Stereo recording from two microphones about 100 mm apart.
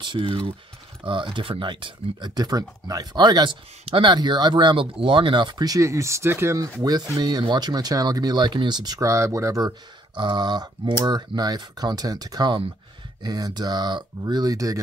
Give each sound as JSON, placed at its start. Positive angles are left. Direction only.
{"t": 0.0, "sound": "speech", "side_deg": -55}
{"t": 3.8, "sound": "speech", "side_deg": -55}
{"t": 6.8, "sound": "speech", "side_deg": -40}
{"t": 10.1, "sound": "speech", "side_deg": -50}